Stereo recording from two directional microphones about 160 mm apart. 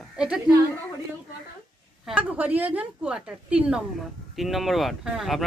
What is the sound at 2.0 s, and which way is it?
A woman's voice, 10° right (ahead or behind).